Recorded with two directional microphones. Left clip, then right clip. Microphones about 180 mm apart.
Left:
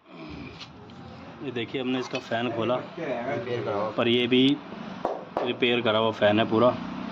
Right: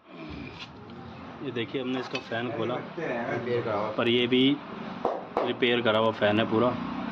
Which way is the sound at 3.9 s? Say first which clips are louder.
Left 2 dB; 20° left (ahead or behind).